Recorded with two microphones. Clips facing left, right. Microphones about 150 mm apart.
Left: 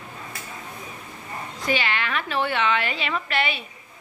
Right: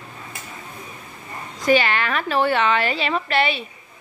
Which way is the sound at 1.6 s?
45° right (ahead or behind).